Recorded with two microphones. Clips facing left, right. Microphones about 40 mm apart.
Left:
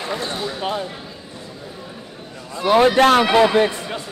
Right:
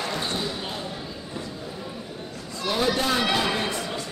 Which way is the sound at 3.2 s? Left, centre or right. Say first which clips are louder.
Left 9 dB; left.